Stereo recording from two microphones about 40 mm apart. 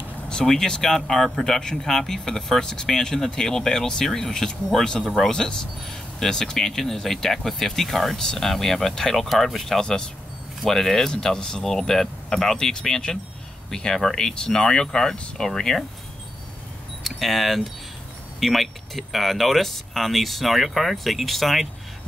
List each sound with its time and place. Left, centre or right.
0.3 s speech: centre
5.0 s speech: centre
5.3 s speech: centre
9.8 s speech: centre
17.0 s speech: centre